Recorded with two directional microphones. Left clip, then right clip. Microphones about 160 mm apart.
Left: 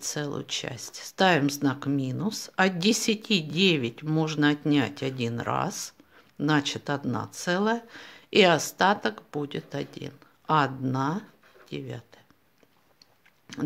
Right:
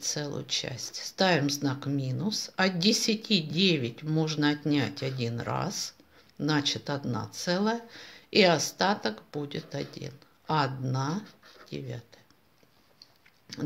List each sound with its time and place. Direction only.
0.0 s speech: 45° left (ahead or behind)
13.5 s speech: 55° left (ahead or behind)